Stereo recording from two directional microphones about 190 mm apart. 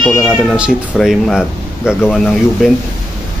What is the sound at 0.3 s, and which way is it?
Speech, centre (ahead or behind).